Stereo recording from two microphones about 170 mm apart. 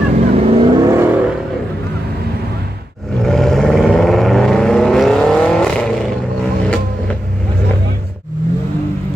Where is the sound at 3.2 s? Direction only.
Centre (ahead or behind).